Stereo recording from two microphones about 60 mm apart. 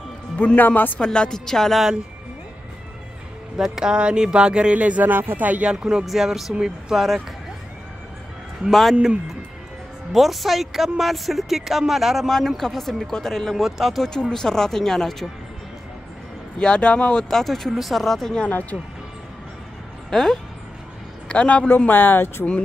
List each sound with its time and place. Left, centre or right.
0.6 s speech: left
0.9 s speech: centre
3.5 s speech: centre; by 5.7 s right
5.7 s speech: centre
8.6 s speech: centre
10.1 s speech: centre
14.3 s speech: centre
16.5 s speech: centre
20.1 s speech: centre
21.3 s a man's voice: left
21.6 s speech: left